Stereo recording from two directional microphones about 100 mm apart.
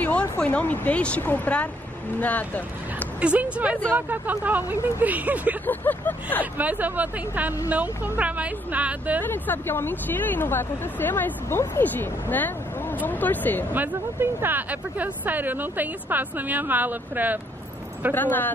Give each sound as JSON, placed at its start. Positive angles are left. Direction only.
{"t": 0.4, "sound": "a woman's voice", "side_deg": 15}
{"t": 3.2, "sound": "speech", "side_deg": -15}
{"t": 5.7, "sound": "a woman's voice", "side_deg": 15}
{"t": 6.4, "sound": "speech", "side_deg": -15}
{"t": 9.2, "sound": "a woman's voice", "side_deg": 20}
{"t": 13.7, "sound": "speech", "side_deg": -20}
{"t": 18.1, "sound": "speech", "side_deg": 20}